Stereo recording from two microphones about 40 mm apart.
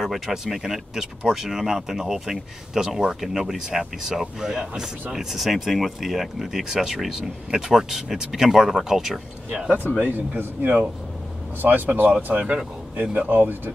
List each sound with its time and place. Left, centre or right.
0.5 s speech: centre
5.1 s speech: centre
9.9 s speech: left
10.6 s speech: right
13.3 s speech: right